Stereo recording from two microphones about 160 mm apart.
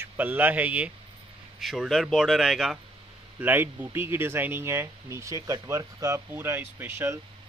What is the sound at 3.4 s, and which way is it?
Speech, 10° right (ahead or behind).